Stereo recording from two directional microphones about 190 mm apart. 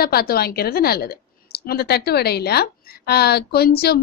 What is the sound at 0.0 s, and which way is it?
A woman's voice, 55° left (ahead or behind).